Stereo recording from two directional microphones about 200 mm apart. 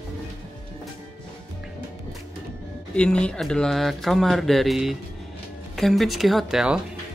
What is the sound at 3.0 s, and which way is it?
Speech, 5° left (ahead or behind).